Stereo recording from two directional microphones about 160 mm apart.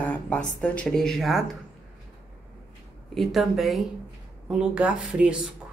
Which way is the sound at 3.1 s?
Centre (ahead or behind).